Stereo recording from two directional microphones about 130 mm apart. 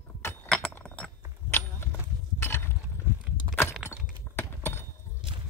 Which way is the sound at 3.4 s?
40° right (ahead or behind).